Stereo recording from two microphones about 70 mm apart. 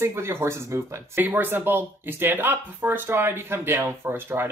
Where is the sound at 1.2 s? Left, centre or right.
Right.